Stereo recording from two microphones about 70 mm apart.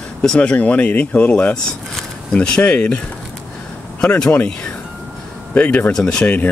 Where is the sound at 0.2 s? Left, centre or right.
Centre.